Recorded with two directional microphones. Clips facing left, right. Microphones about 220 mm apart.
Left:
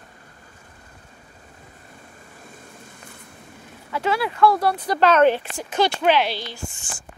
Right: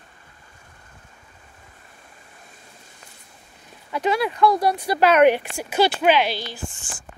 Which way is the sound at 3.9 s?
20° right (ahead or behind).